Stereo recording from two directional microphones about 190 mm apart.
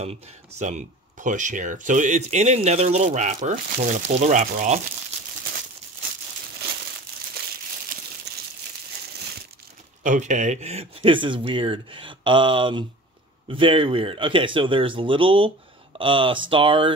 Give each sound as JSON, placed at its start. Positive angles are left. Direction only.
{"t": 0.0, "sound": "speech", "side_deg": -35}
{"t": 7.9, "sound": "crumpling", "side_deg": -50}
{"t": 8.3, "sound": "crumpling", "side_deg": -60}
{"t": 10.0, "sound": "speech", "side_deg": -40}